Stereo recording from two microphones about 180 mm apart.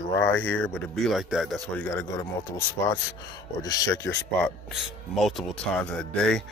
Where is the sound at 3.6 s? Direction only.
20° left (ahead or behind).